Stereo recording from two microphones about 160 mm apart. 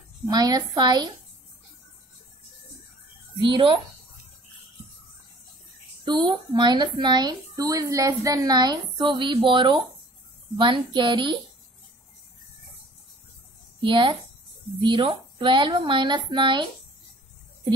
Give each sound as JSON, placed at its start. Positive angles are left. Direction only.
{"t": 0.3, "sound": "speech", "side_deg": -25}
{"t": 3.4, "sound": "a woman's voice", "side_deg": -30}
{"t": 6.0, "sound": "a woman's voice", "side_deg": -25}
{"t": 13.7, "sound": "a woman's voice", "side_deg": -30}